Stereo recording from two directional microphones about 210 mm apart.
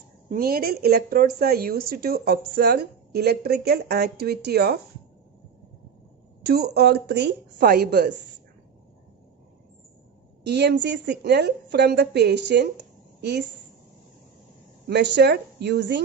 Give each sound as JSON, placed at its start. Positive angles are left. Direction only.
{"t": 0.3, "sound": "speech", "side_deg": -45}
{"t": 6.4, "sound": "speech", "side_deg": -50}
{"t": 10.4, "sound": "speech", "side_deg": -55}
{"t": 14.9, "sound": "speech", "side_deg": -55}